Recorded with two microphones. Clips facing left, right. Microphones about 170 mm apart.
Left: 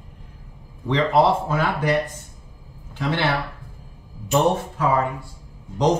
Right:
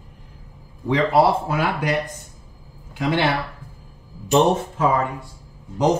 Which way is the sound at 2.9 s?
10° right (ahead or behind).